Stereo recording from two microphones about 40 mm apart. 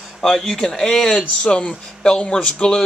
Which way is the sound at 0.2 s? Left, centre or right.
Centre.